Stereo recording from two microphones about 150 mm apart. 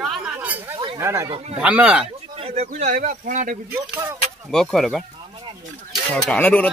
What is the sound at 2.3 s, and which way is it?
Speech, 45° right (ahead or behind).